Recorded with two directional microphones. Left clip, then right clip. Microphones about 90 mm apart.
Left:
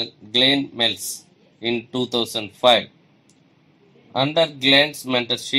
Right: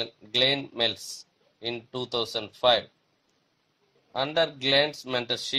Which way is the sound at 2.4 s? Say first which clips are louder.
Left 7 dB; 90° right.